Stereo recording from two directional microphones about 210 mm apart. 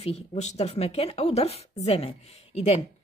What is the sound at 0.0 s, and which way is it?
Speech, 30° left (ahead or behind).